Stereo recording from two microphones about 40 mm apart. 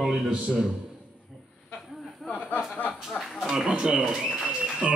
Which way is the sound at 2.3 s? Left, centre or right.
Left.